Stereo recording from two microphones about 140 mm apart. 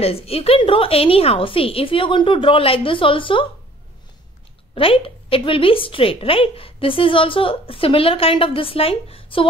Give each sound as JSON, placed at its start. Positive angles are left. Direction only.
{"t": 0.0, "sound": "a woman's voice", "side_deg": 45}
{"t": 4.7, "sound": "a woman's voice", "side_deg": 40}